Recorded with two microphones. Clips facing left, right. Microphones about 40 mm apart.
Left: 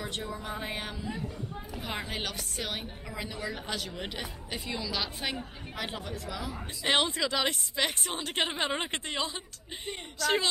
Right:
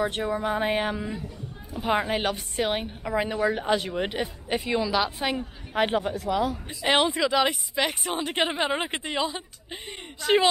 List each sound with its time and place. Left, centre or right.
0.0 s speech: right
1.7 s a woman's voice: right
5.8 s speech: right
6.8 s a woman's voice: centre
9.8 s a woman's voice: right